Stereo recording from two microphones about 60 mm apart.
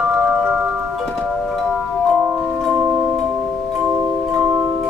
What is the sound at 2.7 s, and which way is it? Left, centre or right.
Tubular bells, right.